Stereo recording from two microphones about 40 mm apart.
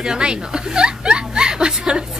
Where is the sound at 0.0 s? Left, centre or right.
Right.